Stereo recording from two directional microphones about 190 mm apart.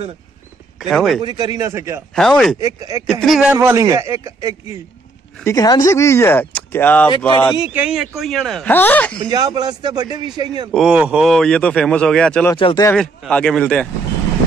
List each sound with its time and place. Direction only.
0.7 s speech: centre (ahead or behind)
1.2 s a man's voice: 20° right (ahead or behind)
2.1 s speech: 5° left (ahead or behind)
2.6 s a man's voice: 20° right (ahead or behind)
3.1 s speech: centre (ahead or behind)
3.5 s a man's voice: 15° right (ahead or behind)
5.4 s speech: 15° left (ahead or behind)
7.5 s speech: 10° right (ahead or behind); by 9.2 s 10° left (ahead or behind)
9.2 s a man's voice: 20° right (ahead or behind)
10.7 s speech: centre (ahead or behind)
12.5 s speech: 25° left (ahead or behind)
12.9 s speech: 5° left (ahead or behind)